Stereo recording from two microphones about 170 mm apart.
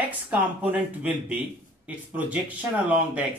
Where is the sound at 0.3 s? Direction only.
10° right (ahead or behind).